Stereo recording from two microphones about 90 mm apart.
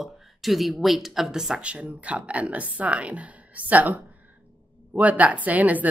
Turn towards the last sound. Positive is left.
turn(degrees=-15)  # may be behind; listen again after turning